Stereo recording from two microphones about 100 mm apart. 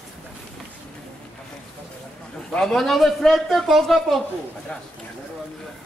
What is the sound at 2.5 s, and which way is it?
A man's voice, 5° left (ahead or behind).